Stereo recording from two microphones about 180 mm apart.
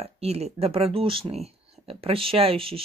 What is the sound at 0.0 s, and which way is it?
Speech, 35° right (ahead or behind).